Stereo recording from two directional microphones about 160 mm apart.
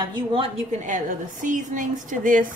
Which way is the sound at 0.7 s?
50° right (ahead or behind).